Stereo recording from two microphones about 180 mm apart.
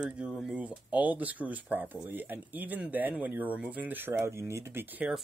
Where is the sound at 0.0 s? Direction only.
5° right (ahead or behind).